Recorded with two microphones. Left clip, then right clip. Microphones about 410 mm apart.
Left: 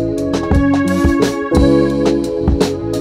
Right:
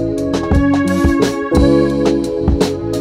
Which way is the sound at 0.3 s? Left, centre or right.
Left.